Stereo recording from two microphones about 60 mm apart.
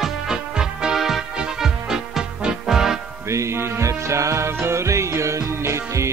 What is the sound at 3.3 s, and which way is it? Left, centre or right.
Music, right.